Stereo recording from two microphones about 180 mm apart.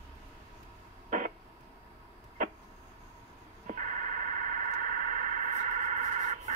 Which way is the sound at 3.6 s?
45° right (ahead or behind).